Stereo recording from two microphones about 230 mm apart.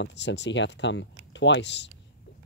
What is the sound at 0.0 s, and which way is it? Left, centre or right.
Speech, left.